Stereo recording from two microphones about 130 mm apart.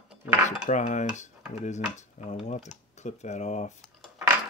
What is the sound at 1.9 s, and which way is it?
Dishes, 65° left (ahead or behind).